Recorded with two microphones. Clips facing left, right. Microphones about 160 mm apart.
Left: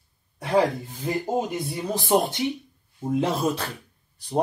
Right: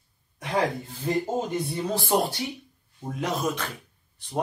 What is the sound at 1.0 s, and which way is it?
Speech, 10° left (ahead or behind).